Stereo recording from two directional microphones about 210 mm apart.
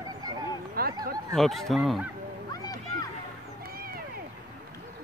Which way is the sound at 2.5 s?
20° left (ahead or behind).